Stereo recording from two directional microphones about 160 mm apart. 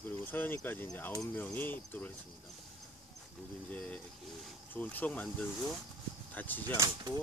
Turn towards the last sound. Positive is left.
turn(degrees=-20)  # may be behind; listen again after turning